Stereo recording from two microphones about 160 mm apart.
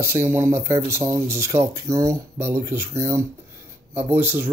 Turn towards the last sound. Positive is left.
turn(degrees=-10)  # may be behind; listen again after turning